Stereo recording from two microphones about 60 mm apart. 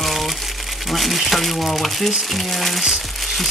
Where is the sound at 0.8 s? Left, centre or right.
Centre.